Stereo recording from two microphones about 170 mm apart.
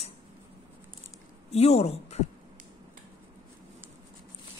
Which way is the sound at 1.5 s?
40° left (ahead or behind).